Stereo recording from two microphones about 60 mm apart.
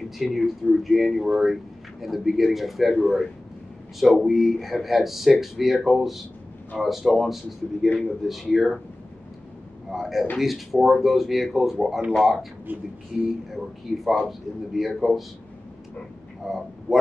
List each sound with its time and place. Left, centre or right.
0.2 s speech: centre
9.8 s a man's voice: centre
12.7 s speech: right
13.9 s speech: centre
16.4 s speech: centre